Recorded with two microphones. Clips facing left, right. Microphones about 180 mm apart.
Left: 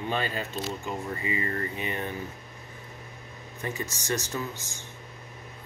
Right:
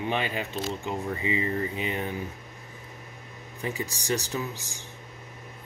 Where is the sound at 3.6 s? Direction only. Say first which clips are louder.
Right 2 dB; 15° right (ahead or behind).